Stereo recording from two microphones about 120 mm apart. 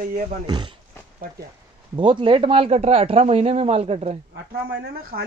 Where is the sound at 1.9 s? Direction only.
45° right (ahead or behind).